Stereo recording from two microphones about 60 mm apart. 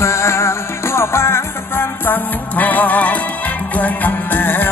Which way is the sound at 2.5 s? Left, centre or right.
Left.